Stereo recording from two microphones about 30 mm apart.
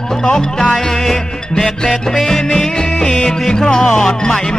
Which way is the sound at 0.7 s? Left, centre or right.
Centre.